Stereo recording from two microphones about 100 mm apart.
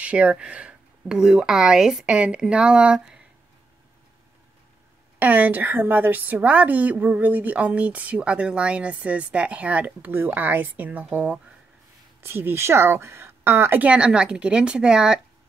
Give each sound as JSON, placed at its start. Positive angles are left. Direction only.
{"t": 0.0, "sound": "a woman's voice", "side_deg": -15}
{"t": 5.2, "sound": "a woman's voice", "side_deg": -15}